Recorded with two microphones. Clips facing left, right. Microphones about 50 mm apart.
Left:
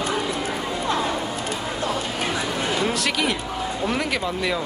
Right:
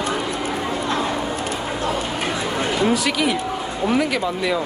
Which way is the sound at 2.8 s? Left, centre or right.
Centre.